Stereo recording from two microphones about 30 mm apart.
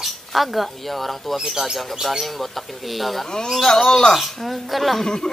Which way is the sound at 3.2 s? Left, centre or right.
Centre.